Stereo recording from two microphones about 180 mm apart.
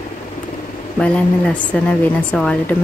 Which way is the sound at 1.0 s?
5° left (ahead or behind).